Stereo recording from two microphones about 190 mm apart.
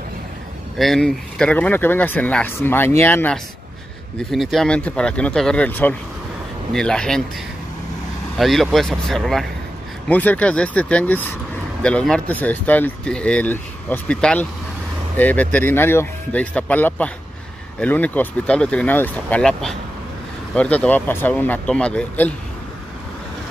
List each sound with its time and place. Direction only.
0.7 s speech: centre (ahead or behind)
4.3 s speech: centre (ahead or behind)
8.4 s speech: centre (ahead or behind)